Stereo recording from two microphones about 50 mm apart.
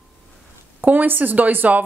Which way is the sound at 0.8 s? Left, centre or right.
Right.